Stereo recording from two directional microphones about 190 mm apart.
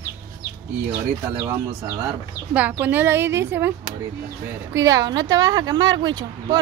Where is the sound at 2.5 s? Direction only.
10° right (ahead or behind).